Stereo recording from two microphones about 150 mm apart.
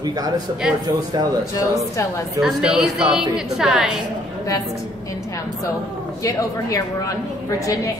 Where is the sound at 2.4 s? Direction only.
5° right (ahead or behind).